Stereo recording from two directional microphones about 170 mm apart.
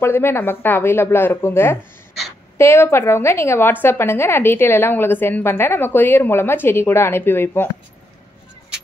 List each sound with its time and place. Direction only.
0.0 s a woman's voice: 15° left (ahead or behind)